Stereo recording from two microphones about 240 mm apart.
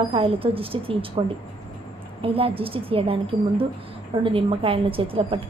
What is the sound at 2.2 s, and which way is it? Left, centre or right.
A woman's voice, right.